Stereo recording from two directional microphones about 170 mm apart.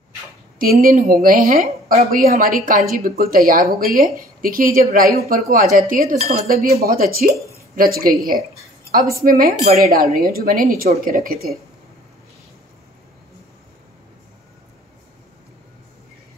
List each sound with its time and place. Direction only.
0.6 s speech: 55° right (ahead or behind)